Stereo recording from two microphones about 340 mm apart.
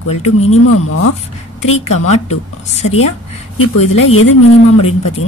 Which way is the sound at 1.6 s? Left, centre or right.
Left.